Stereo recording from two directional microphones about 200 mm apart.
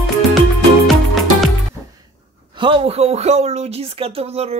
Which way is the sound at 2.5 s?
25° right (ahead or behind).